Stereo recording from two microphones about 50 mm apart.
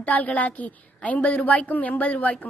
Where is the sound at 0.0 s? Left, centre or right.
Left.